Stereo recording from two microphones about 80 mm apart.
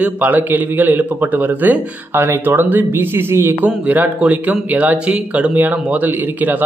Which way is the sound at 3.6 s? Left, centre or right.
Centre.